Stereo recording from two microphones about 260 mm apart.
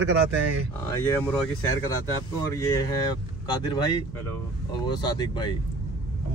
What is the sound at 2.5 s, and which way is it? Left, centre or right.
Speech, centre.